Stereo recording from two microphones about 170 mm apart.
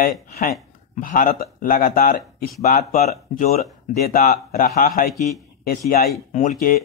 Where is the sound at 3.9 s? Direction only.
60° left (ahead or behind).